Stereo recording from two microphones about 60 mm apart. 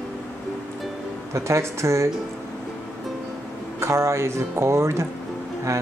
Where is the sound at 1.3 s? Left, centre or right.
Right.